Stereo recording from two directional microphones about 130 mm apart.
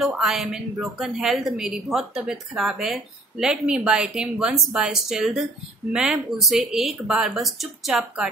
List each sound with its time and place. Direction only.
0.0 s a woman's voice: centre (ahead or behind)